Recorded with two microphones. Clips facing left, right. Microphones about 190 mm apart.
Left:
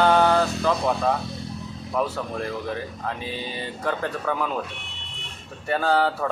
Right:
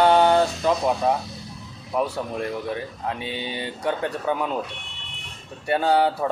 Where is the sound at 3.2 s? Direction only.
70° right (ahead or behind).